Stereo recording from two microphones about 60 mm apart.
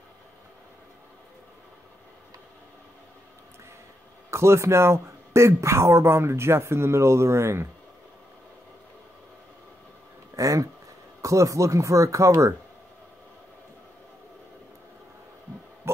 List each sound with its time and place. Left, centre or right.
4.3 s speech: right
10.3 s speech: right